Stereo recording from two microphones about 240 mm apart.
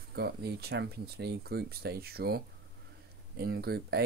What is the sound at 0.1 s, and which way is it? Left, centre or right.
Speech, right.